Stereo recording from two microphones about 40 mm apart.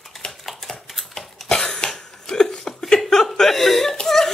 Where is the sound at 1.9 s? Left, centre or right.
Centre.